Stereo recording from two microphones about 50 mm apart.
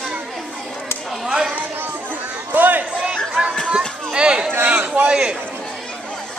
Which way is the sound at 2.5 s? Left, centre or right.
Right.